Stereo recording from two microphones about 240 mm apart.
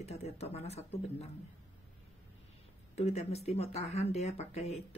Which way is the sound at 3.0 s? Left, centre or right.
Left.